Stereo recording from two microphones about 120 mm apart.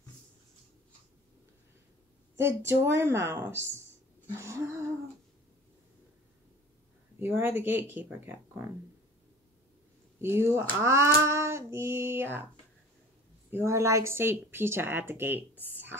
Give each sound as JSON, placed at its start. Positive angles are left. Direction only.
{"t": 2.3, "sound": "a woman's voice", "side_deg": -20}
{"t": 7.2, "sound": "speech", "side_deg": -15}
{"t": 10.1, "sound": "a woman's voice", "side_deg": -20}
{"t": 13.5, "sound": "a woman's voice", "side_deg": -20}